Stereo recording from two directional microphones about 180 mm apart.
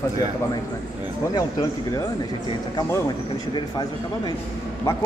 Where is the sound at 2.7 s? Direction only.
20° left (ahead or behind).